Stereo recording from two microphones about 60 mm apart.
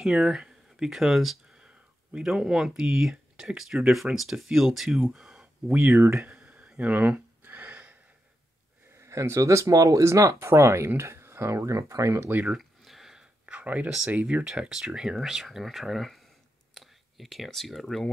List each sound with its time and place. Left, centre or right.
0.0 s speech: centre
5.7 s speech: right
6.8 s a sound: right
8.9 s speech: right
10.0 s speech: right
12.5 s a sound: centre
13.5 s a sound: right
14.2 s speech: centre
16.7 s whispering: centre
17.5 s speech: centre